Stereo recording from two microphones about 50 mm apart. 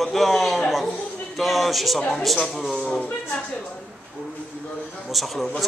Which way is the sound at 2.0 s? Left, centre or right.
Centre.